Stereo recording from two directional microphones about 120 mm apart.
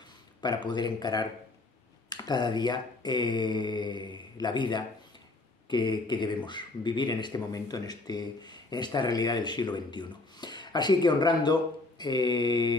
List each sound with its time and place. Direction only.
0.4 s speech: 40° left (ahead or behind)